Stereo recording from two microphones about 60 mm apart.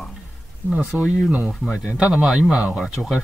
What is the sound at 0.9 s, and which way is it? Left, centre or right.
Speech, centre.